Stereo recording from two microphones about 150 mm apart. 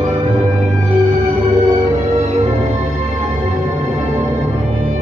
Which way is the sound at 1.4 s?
40° right (ahead or behind).